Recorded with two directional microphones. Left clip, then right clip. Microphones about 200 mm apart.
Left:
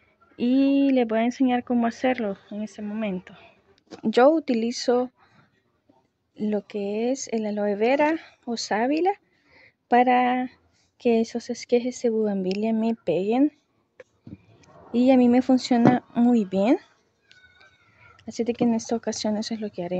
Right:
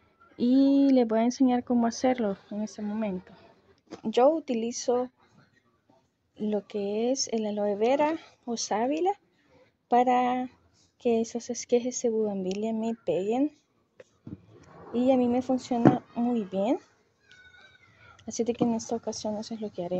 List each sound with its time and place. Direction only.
0.4 s speech: 5° right (ahead or behind)
4.0 s speech: 25° left (ahead or behind)
6.3 s a woman's voice: 15° left (ahead or behind)
18.2 s speech: 15° left (ahead or behind)